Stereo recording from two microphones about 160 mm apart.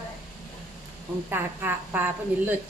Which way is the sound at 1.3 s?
10° right (ahead or behind).